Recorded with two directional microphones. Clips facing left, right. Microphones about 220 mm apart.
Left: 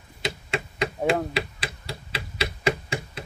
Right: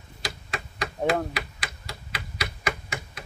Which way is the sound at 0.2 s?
25° left (ahead or behind).